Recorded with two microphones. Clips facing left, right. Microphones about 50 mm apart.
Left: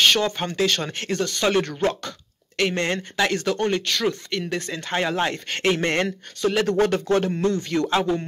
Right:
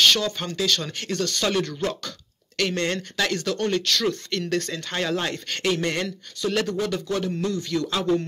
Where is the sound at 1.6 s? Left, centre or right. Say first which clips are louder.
Left 4 dB; left.